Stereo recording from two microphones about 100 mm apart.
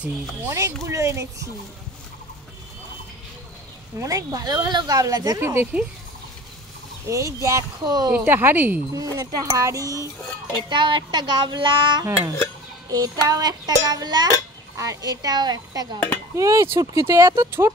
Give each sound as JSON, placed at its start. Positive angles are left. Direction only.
{"t": 0.5, "sound": "a woman's voice", "side_deg": -30}
{"t": 4.0, "sound": "speech", "side_deg": -35}
{"t": 5.4, "sound": "a woman's voice", "side_deg": -25}
{"t": 7.1, "sound": "speech", "side_deg": -30}
{"t": 8.1, "sound": "a woman's voice", "side_deg": -20}
{"t": 8.9, "sound": "speech", "side_deg": -40}
{"t": 10.7, "sound": "child singing", "side_deg": -55}
{"t": 12.9, "sound": "a woman's voice", "side_deg": -40}